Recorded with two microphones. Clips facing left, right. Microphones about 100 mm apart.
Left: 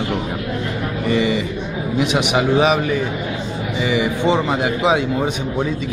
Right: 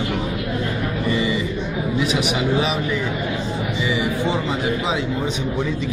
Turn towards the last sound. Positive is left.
turn(degrees=60)  # may be behind; listen again after turning